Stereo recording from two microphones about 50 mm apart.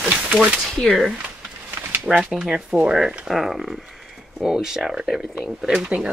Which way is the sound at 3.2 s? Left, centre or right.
Centre.